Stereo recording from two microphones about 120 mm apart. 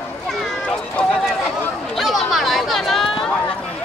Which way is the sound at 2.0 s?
Centre (ahead or behind).